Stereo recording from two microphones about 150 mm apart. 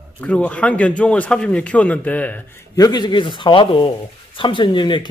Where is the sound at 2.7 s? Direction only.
25° left (ahead or behind).